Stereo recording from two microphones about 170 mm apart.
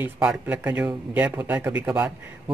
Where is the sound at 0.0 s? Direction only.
5° right (ahead or behind).